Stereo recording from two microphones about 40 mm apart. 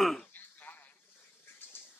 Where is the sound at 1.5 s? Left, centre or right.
Left.